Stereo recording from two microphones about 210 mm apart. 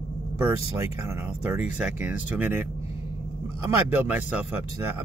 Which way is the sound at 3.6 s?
10° right (ahead or behind).